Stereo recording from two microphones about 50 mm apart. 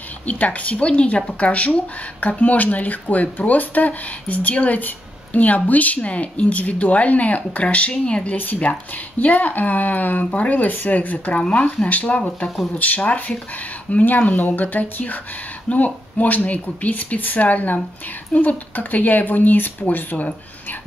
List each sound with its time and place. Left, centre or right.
0.3 s speech: left